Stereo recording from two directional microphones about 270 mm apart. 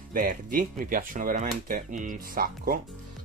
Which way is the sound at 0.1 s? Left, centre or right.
Right.